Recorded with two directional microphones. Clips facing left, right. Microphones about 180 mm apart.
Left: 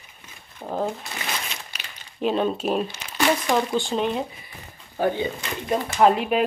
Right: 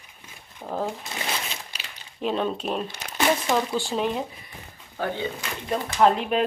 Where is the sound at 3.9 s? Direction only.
Centre (ahead or behind).